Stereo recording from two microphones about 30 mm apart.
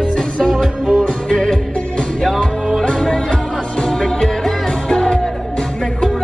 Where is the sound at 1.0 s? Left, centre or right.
Left.